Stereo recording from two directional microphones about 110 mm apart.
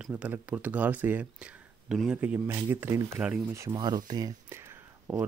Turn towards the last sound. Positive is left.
turn(degrees=-20)  # may be behind; listen again after turning